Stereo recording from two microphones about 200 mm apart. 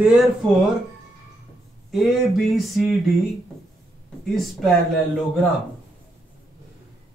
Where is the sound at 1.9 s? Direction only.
Centre (ahead or behind).